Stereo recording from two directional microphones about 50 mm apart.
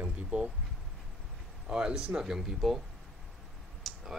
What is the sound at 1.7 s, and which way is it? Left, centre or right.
Speech, centre.